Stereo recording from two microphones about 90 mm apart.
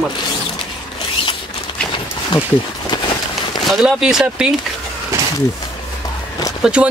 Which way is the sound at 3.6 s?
5° right (ahead or behind).